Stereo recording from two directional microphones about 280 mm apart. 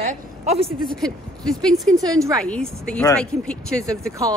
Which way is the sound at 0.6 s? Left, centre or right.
Centre.